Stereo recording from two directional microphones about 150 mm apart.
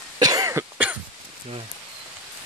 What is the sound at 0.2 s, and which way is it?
Cough, 25° right (ahead or behind).